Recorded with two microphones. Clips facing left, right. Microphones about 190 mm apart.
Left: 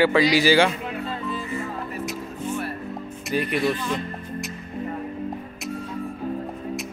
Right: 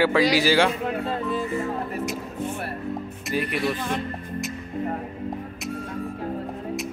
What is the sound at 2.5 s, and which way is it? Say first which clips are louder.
Music: left 1 dB; 60° right (ahead or behind).